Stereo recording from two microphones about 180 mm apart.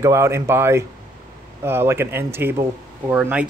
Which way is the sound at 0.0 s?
15° right (ahead or behind).